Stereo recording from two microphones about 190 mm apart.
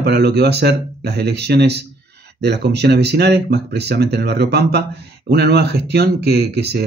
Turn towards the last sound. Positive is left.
turn(degrees=-60)  # may be behind; listen again after turning